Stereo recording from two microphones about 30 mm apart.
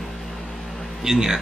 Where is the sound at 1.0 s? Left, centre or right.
Centre.